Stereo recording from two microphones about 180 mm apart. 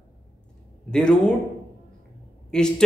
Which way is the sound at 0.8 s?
5° left (ahead or behind).